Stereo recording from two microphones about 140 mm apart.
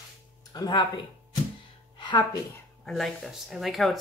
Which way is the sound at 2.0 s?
30° left (ahead or behind).